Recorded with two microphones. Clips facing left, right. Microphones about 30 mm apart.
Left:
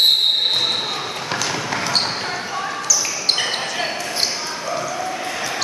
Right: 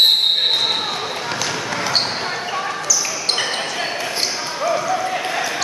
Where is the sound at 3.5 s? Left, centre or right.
Centre.